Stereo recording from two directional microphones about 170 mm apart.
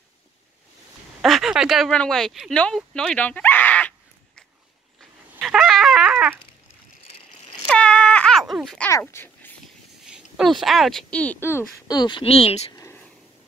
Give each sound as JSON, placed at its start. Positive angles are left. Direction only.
{"t": 1.2, "sound": "speech", "side_deg": 0}
{"t": 5.4, "sound": "dog", "side_deg": 0}
{"t": 7.7, "sound": "a sound", "side_deg": 5}
{"t": 8.8, "sound": "speech", "side_deg": 10}
{"t": 10.0, "sound": "speech", "side_deg": -5}
{"t": 12.7, "sound": "a sound", "side_deg": 15}